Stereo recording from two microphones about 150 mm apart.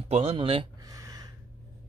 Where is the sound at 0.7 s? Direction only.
25° right (ahead or behind).